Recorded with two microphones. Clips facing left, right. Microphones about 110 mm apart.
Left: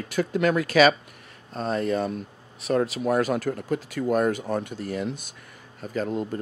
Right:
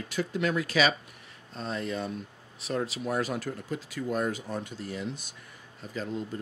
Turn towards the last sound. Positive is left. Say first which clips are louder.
# left 7 dB
turn(degrees=60)  # may be behind; listen again after turning